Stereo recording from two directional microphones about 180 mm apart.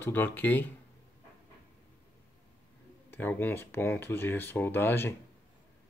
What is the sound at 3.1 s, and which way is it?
Speech, 10° left (ahead or behind).